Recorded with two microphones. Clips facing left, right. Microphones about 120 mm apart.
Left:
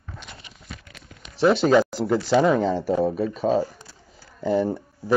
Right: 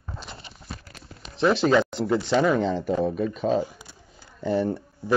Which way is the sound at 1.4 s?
5° left (ahead or behind).